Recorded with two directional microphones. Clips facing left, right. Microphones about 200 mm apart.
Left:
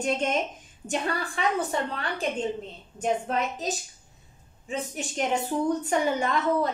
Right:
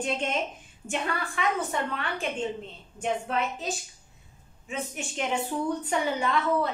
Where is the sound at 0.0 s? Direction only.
45° left (ahead or behind).